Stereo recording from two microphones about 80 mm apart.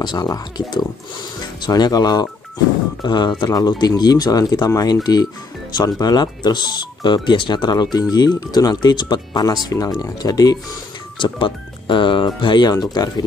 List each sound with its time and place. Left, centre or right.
0.0 s speech: left
3.0 s speech: left
11.1 s speech: left
12.8 s speech: left